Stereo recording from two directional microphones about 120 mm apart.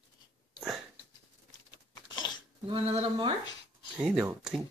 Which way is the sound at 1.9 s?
40° left (ahead or behind).